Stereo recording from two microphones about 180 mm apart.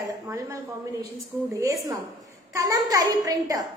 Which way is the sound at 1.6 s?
20° right (ahead or behind).